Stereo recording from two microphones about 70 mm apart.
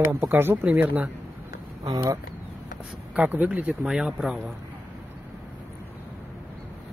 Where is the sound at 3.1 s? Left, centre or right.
Right.